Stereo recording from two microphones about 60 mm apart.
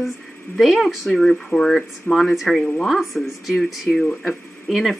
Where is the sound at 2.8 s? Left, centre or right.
Centre.